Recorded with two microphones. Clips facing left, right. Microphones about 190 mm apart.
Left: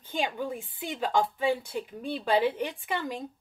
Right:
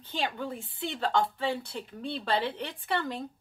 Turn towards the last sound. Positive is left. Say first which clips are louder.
# right 1 dB
turn(degrees=10)  # may be behind; listen again after turning